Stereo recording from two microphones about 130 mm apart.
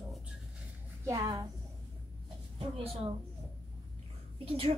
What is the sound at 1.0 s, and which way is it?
Speech, 25° right (ahead or behind).